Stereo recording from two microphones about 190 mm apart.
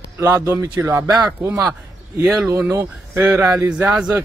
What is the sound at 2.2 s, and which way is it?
Speech, 5° right (ahead or behind).